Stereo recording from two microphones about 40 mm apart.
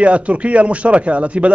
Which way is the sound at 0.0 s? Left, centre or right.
Right.